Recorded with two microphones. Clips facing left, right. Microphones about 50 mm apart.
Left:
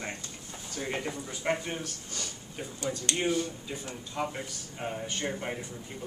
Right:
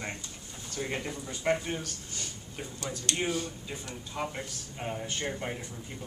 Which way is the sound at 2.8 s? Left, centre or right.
Left.